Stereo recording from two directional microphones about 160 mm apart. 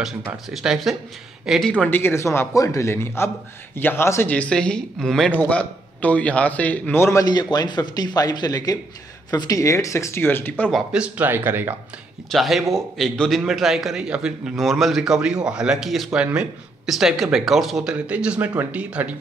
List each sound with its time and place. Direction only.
0.5 s a man's voice: centre (ahead or behind)
10.9 s speech: 10° right (ahead or behind)
12.3 s a man's voice: centre (ahead or behind)